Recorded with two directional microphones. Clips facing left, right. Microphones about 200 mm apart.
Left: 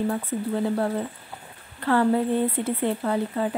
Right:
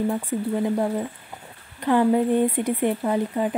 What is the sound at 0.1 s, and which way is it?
Speech, 15° right (ahead or behind).